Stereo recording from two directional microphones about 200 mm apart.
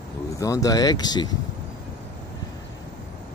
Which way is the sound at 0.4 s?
15° left (ahead or behind).